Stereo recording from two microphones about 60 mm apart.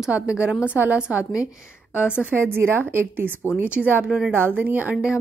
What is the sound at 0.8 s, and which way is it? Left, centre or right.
Speech, right.